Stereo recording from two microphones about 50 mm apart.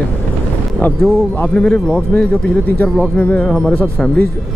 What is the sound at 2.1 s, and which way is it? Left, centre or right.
Speech, left.